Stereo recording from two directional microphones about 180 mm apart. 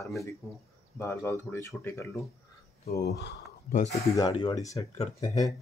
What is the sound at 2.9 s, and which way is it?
Speech, 65° left (ahead or behind).